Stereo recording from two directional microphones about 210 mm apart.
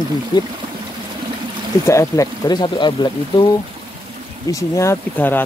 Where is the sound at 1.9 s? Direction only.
15° left (ahead or behind).